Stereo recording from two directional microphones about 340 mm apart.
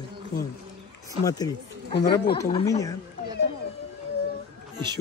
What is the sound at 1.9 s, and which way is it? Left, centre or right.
Speech, left.